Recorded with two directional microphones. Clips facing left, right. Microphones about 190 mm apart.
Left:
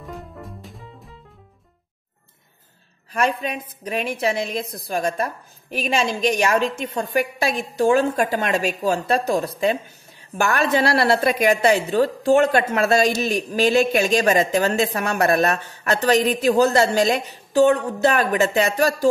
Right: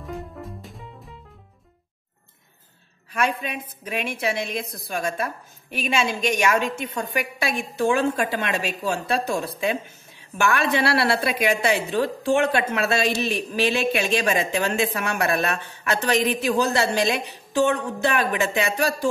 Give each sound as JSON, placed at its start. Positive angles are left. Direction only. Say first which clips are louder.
{"t": 0.1, "sound": "music", "louder": "right 3 dB", "side_deg": 0}
{"t": 3.1, "sound": "a woman's voice", "louder": "left 3 dB", "side_deg": 40}